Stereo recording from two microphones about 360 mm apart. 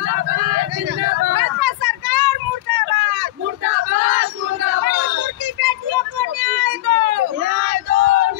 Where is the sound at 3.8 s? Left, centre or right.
Right.